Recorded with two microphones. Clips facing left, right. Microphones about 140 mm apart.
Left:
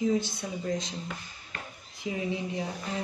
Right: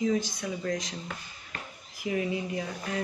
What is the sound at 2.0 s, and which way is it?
Speech, 25° left (ahead or behind).